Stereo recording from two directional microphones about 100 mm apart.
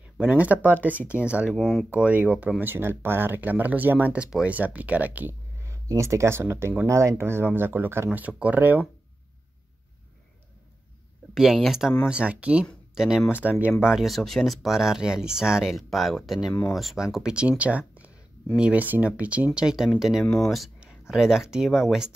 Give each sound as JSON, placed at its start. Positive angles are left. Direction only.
{"t": 0.2, "sound": "speech", "side_deg": -15}
{"t": 0.9, "sound": "speech", "side_deg": 25}
{"t": 1.2, "sound": "speech", "side_deg": -15}
{"t": 1.5, "sound": "speech", "side_deg": 5}
{"t": 2.0, "sound": "speech", "side_deg": -15}
{"t": 5.6, "sound": "speech", "side_deg": -30}
{"t": 11.3, "sound": "speech", "side_deg": -5}
{"t": 13.3, "sound": "speech", "side_deg": -15}